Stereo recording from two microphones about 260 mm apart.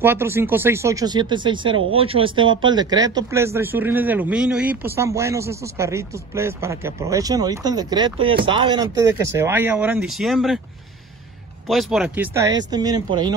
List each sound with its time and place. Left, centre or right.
0.0 s a man's voice: centre
11.6 s a man's voice: centre